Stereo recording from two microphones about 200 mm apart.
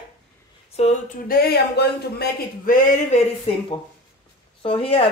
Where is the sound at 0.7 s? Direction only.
35° left (ahead or behind).